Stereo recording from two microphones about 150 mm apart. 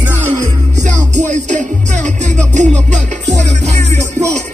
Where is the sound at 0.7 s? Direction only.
55° right (ahead or behind).